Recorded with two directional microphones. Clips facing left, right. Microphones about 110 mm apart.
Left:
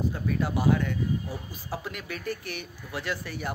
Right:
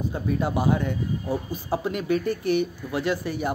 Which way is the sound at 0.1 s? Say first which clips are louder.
Right 3 dB; 20° right (ahead or behind).